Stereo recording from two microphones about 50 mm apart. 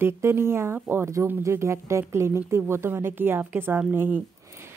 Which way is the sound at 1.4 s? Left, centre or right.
Right.